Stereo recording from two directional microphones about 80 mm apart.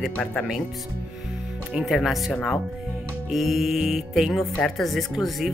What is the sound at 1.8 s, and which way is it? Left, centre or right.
Speech, centre.